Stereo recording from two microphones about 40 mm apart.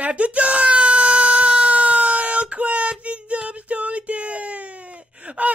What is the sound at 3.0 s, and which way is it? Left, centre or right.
Music, right.